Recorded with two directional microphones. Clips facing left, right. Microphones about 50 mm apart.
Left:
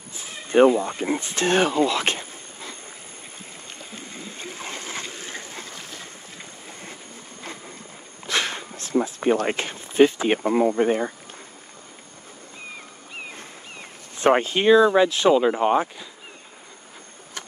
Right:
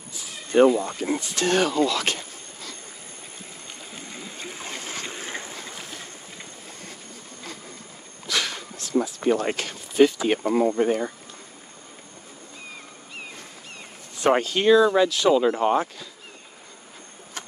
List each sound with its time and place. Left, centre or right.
0.1 s speech: left
5.7 s a sound: centre
8.3 s speech: left
14.1 s speech: left